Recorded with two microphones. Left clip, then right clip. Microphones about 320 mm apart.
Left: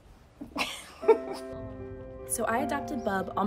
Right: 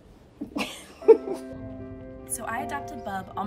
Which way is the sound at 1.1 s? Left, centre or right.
Left.